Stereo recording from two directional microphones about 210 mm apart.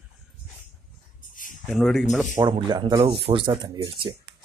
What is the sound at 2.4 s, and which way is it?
Speech, 20° right (ahead or behind).